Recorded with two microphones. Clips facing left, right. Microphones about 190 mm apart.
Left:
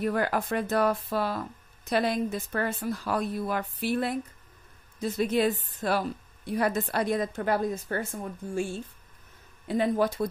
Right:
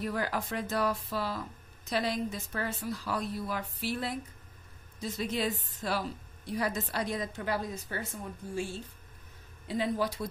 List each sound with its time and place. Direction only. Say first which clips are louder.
0.0 s a woman's voice: left 6 dB; 55° left (ahead or behind)